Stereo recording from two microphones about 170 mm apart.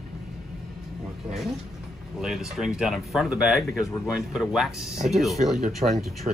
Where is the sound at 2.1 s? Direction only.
Centre (ahead or behind).